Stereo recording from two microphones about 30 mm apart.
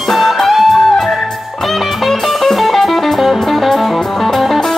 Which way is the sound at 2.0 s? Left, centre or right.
Centre.